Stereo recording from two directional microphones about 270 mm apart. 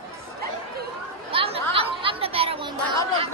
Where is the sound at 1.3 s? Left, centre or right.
Centre.